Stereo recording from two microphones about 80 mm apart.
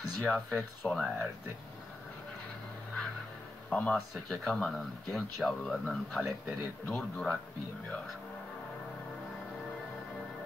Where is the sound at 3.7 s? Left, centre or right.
Centre.